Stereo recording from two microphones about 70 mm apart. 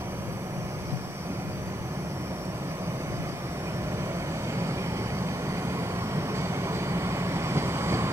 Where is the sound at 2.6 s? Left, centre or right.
Right.